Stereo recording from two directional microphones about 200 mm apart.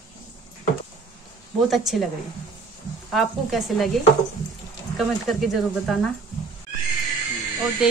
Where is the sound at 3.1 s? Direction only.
Centre (ahead or behind).